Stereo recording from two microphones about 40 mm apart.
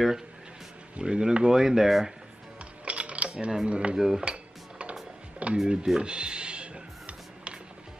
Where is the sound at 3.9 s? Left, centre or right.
Centre.